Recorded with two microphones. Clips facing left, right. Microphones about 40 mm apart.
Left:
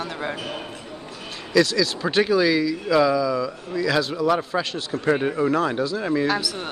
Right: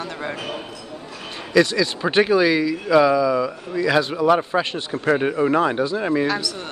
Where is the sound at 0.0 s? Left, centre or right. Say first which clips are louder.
Even; centre.